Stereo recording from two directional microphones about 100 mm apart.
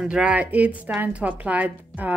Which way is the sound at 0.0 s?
15° right (ahead or behind).